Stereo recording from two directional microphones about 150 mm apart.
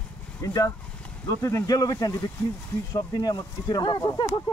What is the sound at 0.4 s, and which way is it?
Speech, 20° left (ahead or behind).